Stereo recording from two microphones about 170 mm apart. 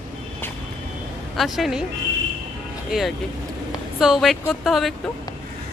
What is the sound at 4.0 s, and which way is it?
Speech, centre (ahead or behind).